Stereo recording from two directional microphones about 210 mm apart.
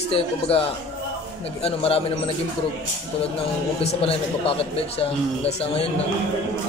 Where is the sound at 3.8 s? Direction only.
30° left (ahead or behind).